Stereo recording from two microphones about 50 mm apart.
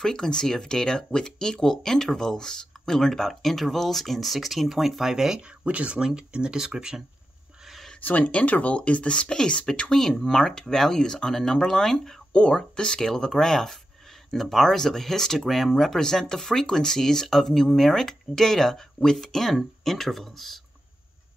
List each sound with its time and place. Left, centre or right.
0.0 s speech: centre
5.7 s speech: right
5.9 s speech: centre
7.6 s a sound: centre
8.0 s speech: left; by 12.2 s centre
12.3 s speech: centre